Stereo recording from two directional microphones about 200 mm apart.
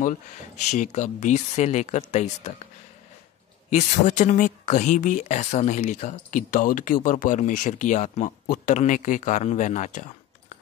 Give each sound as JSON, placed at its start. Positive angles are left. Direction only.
{"t": 0.7, "sound": "speech", "side_deg": 35}
{"t": 3.7, "sound": "speech", "side_deg": 35}